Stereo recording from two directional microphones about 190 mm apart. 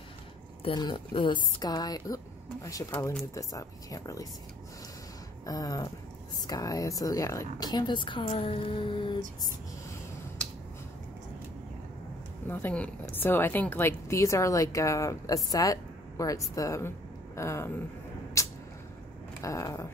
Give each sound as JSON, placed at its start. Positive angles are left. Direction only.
{"t": 0.7, "sound": "a woman's voice", "side_deg": 25}
{"t": 5.4, "sound": "a sound", "side_deg": 20}
{"t": 6.4, "sound": "speech", "side_deg": 20}
{"t": 12.4, "sound": "a woman's voice", "side_deg": 10}
{"t": 18.4, "sound": "vehicle", "side_deg": 15}
{"t": 19.4, "sound": "a woman's voice", "side_deg": 15}